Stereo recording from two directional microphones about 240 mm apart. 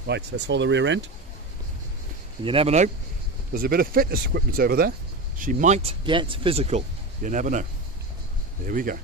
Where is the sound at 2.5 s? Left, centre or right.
Right.